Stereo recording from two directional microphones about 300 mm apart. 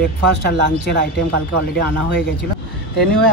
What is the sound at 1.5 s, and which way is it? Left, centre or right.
Speech, right.